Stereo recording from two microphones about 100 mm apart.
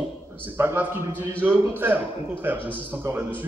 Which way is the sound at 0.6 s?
25° right (ahead or behind).